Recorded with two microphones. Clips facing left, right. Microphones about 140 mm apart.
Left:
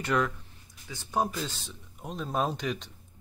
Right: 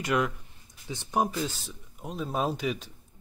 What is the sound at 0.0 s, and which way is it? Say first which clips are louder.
Speech: right 1 dB; 10° right (ahead or behind).